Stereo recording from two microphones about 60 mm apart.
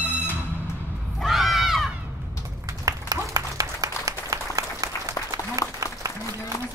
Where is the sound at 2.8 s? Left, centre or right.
Right.